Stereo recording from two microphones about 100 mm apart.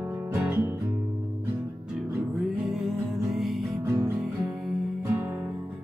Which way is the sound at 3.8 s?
25° right (ahead or behind).